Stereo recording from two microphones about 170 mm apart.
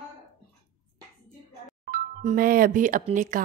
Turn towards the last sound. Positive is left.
turn(degrees=-50)  # may be behind; listen again after turning